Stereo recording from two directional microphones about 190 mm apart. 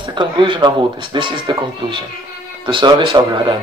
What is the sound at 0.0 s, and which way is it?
Speech, 25° right (ahead or behind).